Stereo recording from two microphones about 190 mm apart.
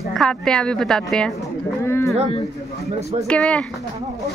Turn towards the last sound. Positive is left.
turn(degrees=5)  # may be behind; listen again after turning